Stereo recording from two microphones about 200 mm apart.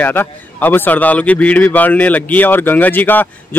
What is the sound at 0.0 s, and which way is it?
A man's voice, 10° left (ahead or behind).